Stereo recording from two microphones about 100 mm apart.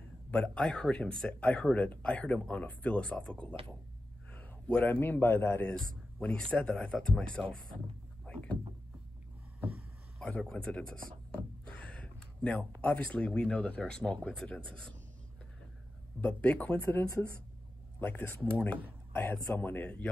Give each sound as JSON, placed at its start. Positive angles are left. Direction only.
{"t": 0.3, "sound": "speech", "side_deg": 10}
{"t": 4.3, "sound": "a sound", "side_deg": 10}
{"t": 5.0, "sound": "speech", "side_deg": 20}
{"t": 9.6, "sound": "vehicle", "side_deg": -15}
{"t": 10.2, "sound": "speech", "side_deg": 10}
{"t": 16.2, "sound": "speech", "side_deg": 15}
{"t": 18.0, "sound": "speech", "side_deg": 15}